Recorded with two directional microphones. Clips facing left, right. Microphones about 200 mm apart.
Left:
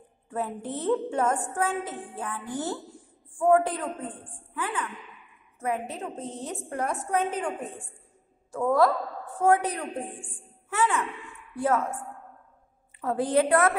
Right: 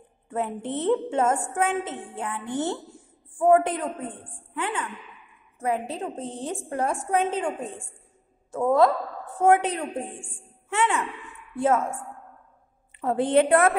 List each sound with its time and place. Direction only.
0.3 s a woman's voice: 25° right (ahead or behind)